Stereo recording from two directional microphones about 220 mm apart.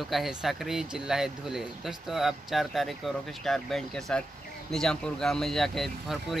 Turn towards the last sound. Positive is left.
turn(degrees=0)  # may be behind; listen again after turning